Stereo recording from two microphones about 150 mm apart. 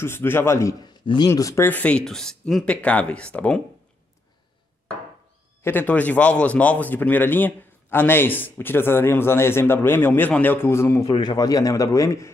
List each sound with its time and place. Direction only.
0.0 s a man's voice: 15° left (ahead or behind)
1.0 s speech: 30° left (ahead or behind)
1.3 s a man's voice: 20° left (ahead or behind)
5.6 s a man's voice: 15° left (ahead or behind)
11.1 s a man's voice: 30° left (ahead or behind)